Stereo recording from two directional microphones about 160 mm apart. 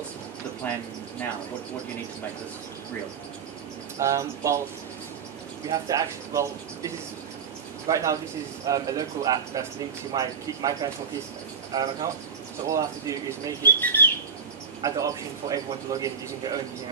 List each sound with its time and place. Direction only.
0.6 s speech: 10° left (ahead or behind)
4.0 s a man's voice: 20° right (ahead or behind)
5.7 s a man's voice: 20° right (ahead or behind)
7.9 s a man's voice: 20° right (ahead or behind)
13.6 s speech: 10° left (ahead or behind)
14.8 s a man's voice: 20° right (ahead or behind)